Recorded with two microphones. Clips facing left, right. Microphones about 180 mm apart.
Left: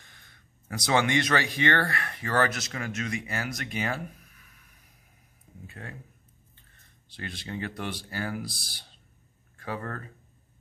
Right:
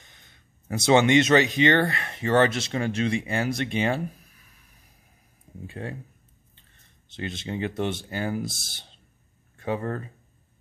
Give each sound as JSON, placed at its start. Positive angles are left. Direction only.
{"t": 0.0, "sound": "speech", "side_deg": -20}
{"t": 5.7, "sound": "speech", "side_deg": -30}
{"t": 7.1, "sound": "speech", "side_deg": -20}